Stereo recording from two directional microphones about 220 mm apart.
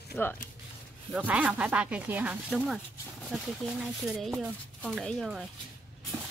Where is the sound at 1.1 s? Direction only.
5° right (ahead or behind).